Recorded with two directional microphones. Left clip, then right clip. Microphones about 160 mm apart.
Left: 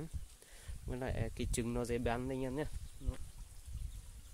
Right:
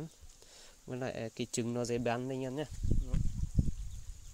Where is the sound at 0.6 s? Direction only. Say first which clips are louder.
Right 3 dB; 20° right (ahead or behind).